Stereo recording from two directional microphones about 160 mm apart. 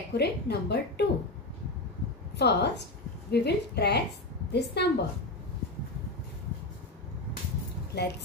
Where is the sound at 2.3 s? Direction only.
90° left.